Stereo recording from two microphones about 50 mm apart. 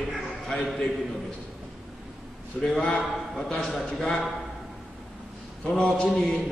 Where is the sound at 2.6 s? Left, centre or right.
Left.